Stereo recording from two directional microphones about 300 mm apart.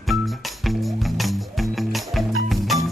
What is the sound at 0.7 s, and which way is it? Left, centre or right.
Music, centre.